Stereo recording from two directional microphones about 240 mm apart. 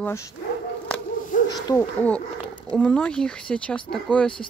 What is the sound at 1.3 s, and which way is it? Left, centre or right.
Owl, left.